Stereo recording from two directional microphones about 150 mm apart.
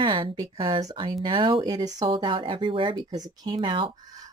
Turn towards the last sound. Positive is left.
turn(degrees=-35)  # may be behind; listen again after turning